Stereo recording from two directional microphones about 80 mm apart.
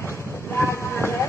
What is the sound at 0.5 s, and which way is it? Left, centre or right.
Vehicle, left.